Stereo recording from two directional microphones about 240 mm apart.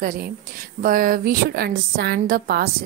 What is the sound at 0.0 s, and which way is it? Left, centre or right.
A woman's voice, right.